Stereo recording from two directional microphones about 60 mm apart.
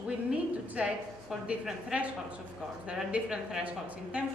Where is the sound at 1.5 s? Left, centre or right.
Centre.